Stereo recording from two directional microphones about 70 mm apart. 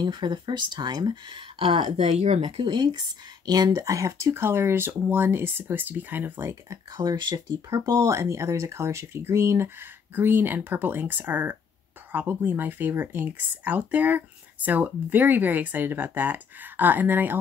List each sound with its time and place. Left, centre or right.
0.0 s speech: right
2.7 s speech: right
3.8 s speech: right
6.4 s speech: right
7.0 s speech: right
7.4 s speech: right
10.1 s speech: right